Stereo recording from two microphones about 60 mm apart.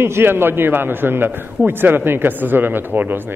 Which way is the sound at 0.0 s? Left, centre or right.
Right.